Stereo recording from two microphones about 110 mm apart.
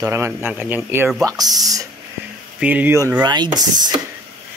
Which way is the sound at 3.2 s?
40° right (ahead or behind).